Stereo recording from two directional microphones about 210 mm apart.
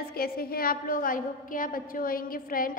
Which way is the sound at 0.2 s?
45° left (ahead or behind).